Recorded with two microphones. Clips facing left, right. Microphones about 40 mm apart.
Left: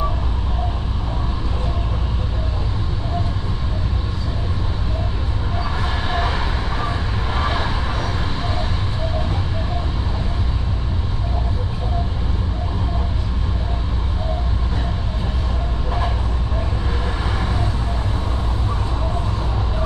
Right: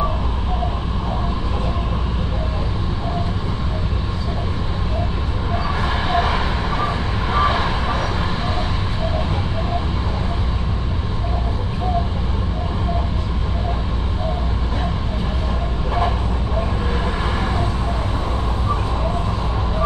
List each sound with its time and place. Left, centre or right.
5.8 s vehicle: centre